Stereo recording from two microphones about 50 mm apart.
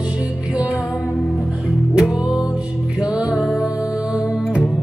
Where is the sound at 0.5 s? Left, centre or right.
Right.